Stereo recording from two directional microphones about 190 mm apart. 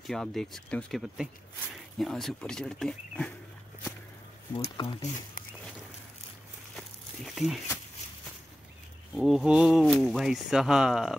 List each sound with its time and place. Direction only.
0.0 s speech: centre (ahead or behind)
4.7 s speech: 25° left (ahead or behind)
7.2 s speech: centre (ahead or behind)
9.1 s speech: centre (ahead or behind)